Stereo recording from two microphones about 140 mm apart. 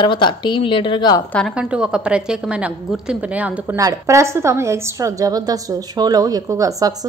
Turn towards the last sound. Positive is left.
turn(degrees=-25)  # may be behind; listen again after turning